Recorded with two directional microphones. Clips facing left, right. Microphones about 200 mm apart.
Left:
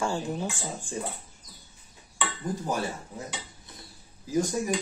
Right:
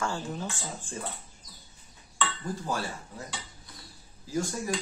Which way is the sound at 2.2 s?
20° left (ahead or behind).